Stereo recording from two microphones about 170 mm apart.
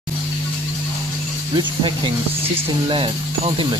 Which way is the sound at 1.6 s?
30° right (ahead or behind).